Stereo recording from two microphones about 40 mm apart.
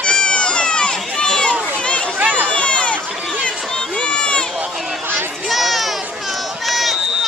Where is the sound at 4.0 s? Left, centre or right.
Left.